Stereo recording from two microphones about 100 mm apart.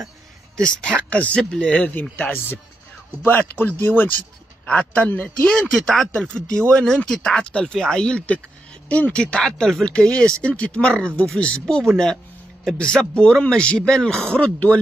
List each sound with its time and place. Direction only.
0.6 s a man's voice: 5° left (ahead or behind)
3.3 s a man's voice: 20° left (ahead or behind)